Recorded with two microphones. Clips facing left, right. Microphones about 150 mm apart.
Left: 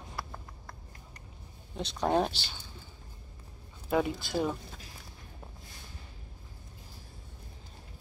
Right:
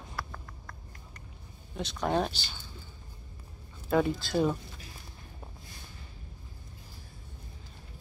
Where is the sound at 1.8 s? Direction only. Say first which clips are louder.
Left 1 dB; 25° left (ahead or behind).